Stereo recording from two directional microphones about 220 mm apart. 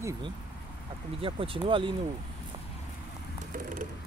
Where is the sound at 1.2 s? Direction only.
25° right (ahead or behind).